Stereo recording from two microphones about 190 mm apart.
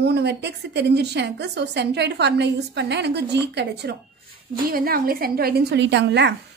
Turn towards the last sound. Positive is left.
turn(degrees=-65)  # may be behind; listen again after turning